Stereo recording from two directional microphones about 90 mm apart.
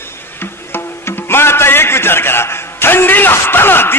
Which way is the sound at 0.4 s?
25° left (ahead or behind).